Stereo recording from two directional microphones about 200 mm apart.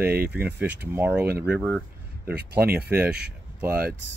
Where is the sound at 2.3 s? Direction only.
50° right (ahead or behind).